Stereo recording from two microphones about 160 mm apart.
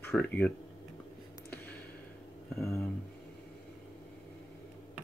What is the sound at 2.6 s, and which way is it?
Speech, 15° left (ahead or behind).